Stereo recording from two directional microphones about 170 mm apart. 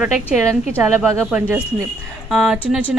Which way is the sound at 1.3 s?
15° right (ahead or behind).